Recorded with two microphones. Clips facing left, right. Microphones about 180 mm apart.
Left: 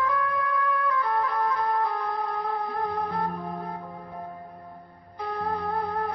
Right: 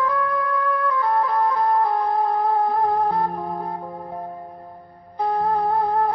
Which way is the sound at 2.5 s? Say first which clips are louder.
Right 9 dB; 30° right (ahead or behind).